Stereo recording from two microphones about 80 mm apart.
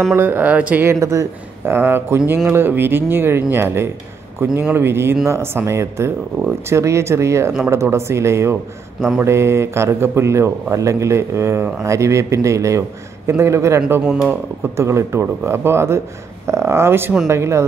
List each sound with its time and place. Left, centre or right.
0.1 s speech: right
0.8 s a man's voice: right
14.0 s speech: centre
14.3 s a man's voice: right